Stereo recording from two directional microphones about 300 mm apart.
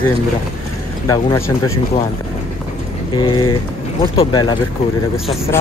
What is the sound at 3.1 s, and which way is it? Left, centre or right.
Speech, centre.